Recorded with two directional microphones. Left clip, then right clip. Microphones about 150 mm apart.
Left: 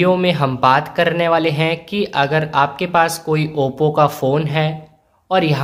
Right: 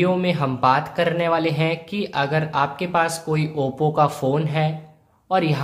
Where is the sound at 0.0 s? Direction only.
20° left (ahead or behind).